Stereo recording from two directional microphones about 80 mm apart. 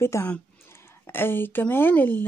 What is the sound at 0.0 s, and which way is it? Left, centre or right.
Speech, left.